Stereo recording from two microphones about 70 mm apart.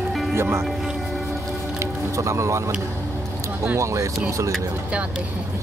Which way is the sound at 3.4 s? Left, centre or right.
Right.